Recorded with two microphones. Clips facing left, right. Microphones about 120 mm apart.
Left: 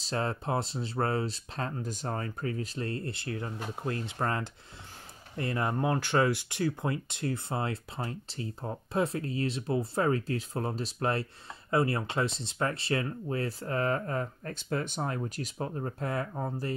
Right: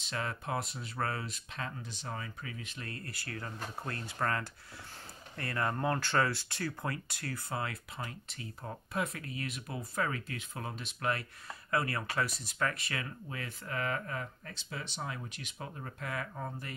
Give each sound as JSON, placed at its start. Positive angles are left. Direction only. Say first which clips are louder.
{"t": 0.0, "sound": "speech", "louder": "left 6 dB", "side_deg": 35}